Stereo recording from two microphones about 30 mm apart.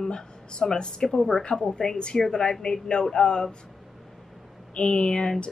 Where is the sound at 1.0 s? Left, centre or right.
Centre.